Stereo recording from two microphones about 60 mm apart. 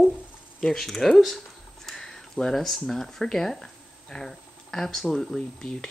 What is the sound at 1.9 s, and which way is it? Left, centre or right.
Speech, centre.